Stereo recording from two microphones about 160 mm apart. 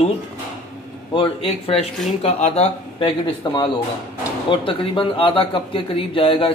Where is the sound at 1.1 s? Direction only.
35° left (ahead or behind).